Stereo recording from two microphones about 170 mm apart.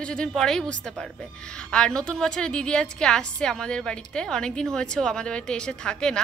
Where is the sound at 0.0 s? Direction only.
5° left (ahead or behind).